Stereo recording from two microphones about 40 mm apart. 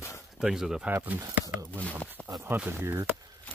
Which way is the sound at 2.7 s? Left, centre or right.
Right.